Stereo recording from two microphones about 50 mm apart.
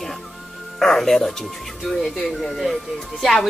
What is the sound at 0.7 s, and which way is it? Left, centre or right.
Music, centre.